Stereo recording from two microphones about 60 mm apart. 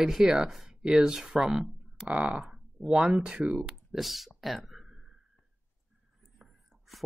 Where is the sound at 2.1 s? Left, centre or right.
Right.